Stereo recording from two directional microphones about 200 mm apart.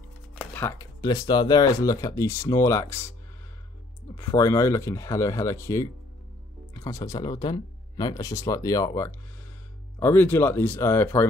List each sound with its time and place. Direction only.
0.3 s speech: 10° left (ahead or behind)
4.2 s speech: 15° left (ahead or behind)